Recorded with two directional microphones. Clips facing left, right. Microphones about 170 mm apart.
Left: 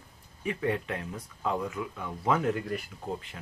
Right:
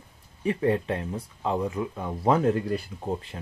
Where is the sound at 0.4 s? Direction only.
35° right (ahead or behind).